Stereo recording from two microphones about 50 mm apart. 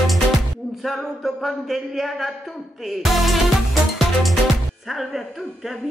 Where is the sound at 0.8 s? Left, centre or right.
Centre.